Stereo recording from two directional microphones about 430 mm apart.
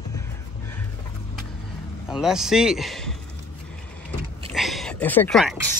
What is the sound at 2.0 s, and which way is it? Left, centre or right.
Speech, centre.